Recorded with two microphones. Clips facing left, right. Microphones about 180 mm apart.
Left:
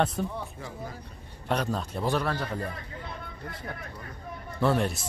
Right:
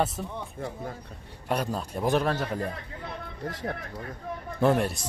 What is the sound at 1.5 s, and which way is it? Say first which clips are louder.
A man's voice: even; 10° right (ahead or behind).